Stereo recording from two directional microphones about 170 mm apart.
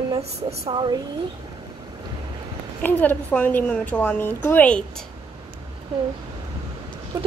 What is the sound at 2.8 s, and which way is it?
A woman's voice, 10° left (ahead or behind).